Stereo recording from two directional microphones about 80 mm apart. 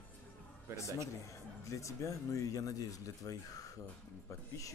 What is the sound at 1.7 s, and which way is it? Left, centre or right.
Speech, left.